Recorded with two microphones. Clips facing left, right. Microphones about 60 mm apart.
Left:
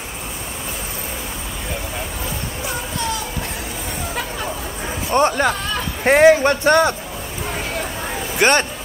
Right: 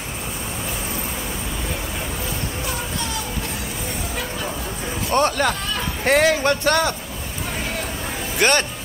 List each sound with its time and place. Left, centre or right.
5.1 s a man's voice: centre
8.4 s a man's voice: left